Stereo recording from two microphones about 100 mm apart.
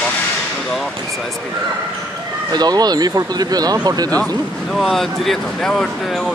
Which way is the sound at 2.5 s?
40° right (ahead or behind).